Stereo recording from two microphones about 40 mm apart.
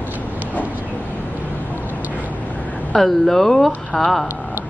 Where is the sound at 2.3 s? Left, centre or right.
Left.